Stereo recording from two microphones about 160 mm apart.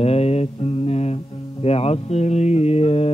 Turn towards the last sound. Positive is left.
turn(degrees=40)  # may be behind; listen again after turning